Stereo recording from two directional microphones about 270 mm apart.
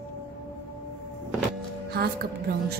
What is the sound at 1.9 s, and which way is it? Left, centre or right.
Speech, right.